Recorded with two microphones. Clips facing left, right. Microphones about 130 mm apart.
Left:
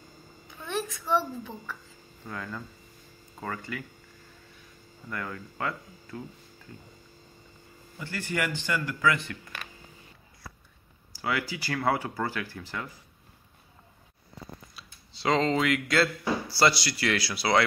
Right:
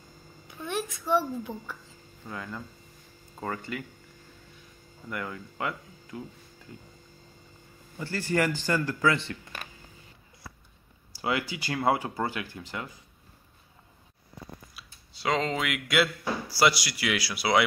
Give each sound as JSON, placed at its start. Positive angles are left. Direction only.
{"t": 0.7, "sound": "a child's voice", "side_deg": -15}
{"t": 5.1, "sound": "speech", "side_deg": -20}
{"t": 8.0, "sound": "a man's voice", "side_deg": -35}
{"t": 11.1, "sound": "speech", "side_deg": -25}
{"t": 14.8, "sound": "a child's voice", "side_deg": -5}